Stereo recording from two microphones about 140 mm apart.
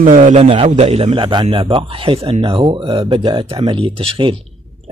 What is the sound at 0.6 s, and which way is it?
Speech, 55° right (ahead or behind).